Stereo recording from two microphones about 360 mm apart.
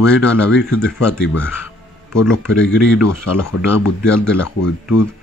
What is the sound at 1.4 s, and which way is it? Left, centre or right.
Music, centre.